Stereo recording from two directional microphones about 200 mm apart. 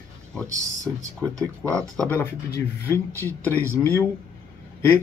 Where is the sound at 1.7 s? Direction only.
10° left (ahead or behind).